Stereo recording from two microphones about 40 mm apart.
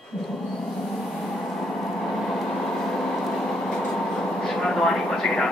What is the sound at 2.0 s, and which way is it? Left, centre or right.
Vehicle, centre.